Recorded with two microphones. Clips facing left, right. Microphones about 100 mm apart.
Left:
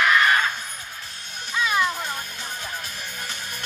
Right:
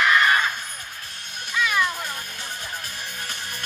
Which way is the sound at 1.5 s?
25° left (ahead or behind).